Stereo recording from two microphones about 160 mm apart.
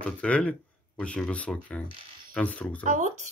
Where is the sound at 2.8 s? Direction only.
50° right (ahead or behind).